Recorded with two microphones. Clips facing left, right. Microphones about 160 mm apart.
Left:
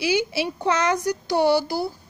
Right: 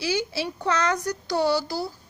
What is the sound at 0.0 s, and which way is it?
A woman's voice, 15° left (ahead or behind).